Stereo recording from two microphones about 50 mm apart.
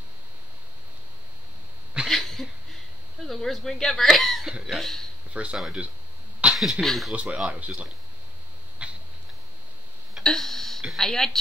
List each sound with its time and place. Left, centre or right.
2.0 s cough: centre
3.3 s speech: centre
5.3 s speech: right
6.4 s a sound: right
6.8 s speech: centre
7.1 s speech: centre
7.5 s speech: right
8.8 s cat: right
10.2 s a sound: centre
11.0 s speech: centre